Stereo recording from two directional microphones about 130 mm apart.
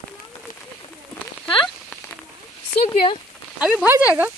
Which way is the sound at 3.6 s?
5° right (ahead or behind).